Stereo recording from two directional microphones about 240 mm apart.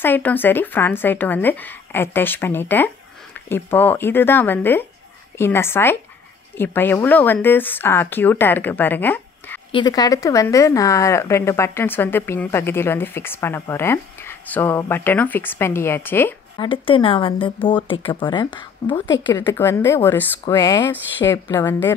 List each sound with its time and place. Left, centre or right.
0.0 s speech: centre
16.6 s speech: left